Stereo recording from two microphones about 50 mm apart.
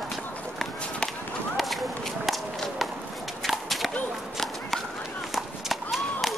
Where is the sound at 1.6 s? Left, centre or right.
Centre.